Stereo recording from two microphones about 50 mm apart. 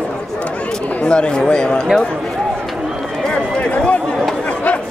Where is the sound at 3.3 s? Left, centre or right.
Left.